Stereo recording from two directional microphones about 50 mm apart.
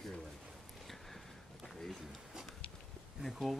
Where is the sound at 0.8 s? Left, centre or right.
Centre.